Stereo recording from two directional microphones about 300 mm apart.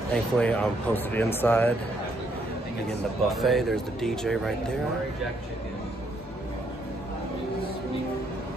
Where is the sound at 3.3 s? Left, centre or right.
Centre.